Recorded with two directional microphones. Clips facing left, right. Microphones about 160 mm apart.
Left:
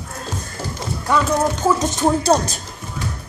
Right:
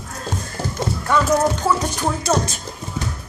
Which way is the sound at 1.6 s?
20° left (ahead or behind).